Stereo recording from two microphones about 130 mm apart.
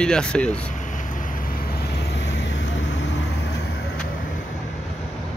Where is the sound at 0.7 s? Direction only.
75° left (ahead or behind).